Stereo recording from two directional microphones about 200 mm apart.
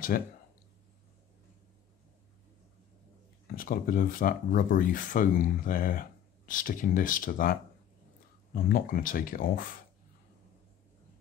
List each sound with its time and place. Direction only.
3.5 s speech: 45° left (ahead or behind)
8.5 s speech: 45° left (ahead or behind)